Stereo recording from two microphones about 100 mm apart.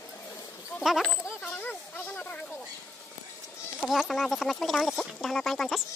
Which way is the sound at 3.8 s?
Centre (ahead or behind).